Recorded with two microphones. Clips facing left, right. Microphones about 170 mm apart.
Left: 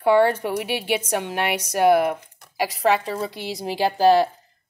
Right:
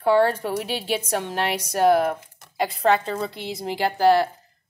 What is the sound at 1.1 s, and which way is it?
A woman's voice, 10° left (ahead or behind).